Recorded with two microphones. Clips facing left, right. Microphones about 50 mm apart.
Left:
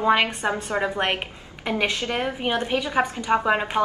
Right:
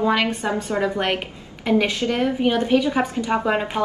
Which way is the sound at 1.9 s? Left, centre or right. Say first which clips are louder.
Right 4 dB; left.